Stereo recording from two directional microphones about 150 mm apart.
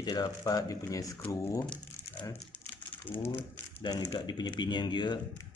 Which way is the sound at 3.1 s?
15° left (ahead or behind).